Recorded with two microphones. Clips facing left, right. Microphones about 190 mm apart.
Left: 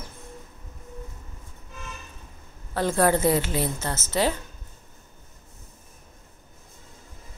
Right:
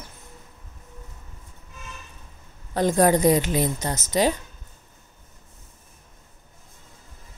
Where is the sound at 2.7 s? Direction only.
15° right (ahead or behind).